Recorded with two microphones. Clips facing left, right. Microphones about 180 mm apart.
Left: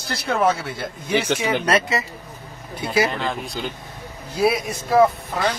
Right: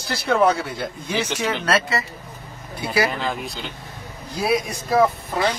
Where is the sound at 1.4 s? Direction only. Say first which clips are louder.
Left 2 dB; 15° left (ahead or behind).